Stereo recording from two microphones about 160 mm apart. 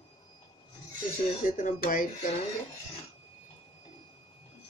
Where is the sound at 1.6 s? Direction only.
60° left (ahead or behind).